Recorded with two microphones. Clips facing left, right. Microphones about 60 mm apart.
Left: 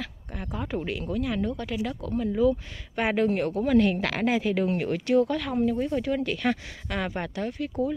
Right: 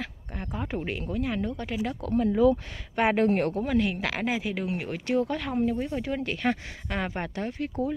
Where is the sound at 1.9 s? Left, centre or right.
Right.